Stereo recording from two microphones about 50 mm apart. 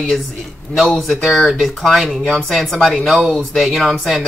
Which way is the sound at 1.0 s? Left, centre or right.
Centre.